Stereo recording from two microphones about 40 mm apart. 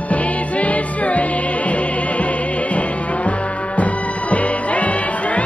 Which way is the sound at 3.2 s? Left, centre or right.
Left.